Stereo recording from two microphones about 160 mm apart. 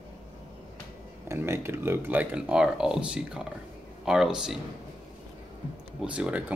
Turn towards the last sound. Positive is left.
turn(degrees=-5)  # may be behind; listen again after turning